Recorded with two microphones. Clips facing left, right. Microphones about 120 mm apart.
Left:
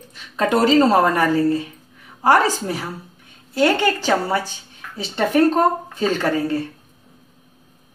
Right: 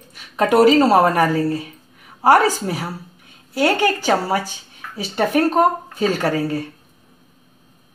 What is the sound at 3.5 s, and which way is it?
Speech, 15° right (ahead or behind).